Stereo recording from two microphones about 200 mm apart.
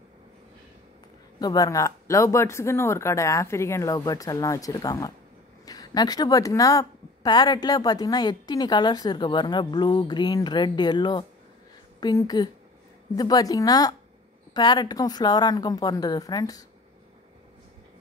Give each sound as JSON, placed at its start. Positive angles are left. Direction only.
{"t": 1.4, "sound": "speech", "side_deg": 20}